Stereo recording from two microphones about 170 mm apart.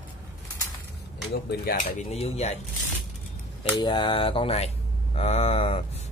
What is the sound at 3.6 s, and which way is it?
Mantra, 25° left (ahead or behind).